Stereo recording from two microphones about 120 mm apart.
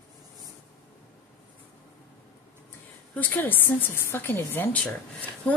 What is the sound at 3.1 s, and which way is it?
A woman's voice, 15° left (ahead or behind).